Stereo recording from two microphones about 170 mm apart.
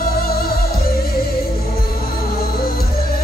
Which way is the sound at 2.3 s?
60° left (ahead or behind).